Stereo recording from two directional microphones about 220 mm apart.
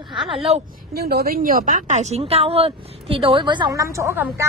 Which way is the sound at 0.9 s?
45° right (ahead or behind).